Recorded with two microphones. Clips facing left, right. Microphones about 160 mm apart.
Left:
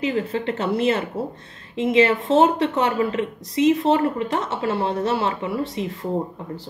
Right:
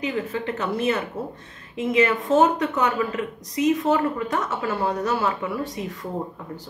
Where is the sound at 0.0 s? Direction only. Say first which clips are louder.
Left 3 dB; 30° left (ahead or behind).